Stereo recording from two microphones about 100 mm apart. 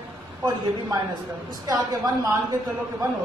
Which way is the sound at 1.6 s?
40° right (ahead or behind).